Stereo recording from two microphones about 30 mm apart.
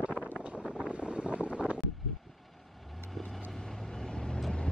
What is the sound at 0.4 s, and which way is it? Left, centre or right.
Vehicle, right.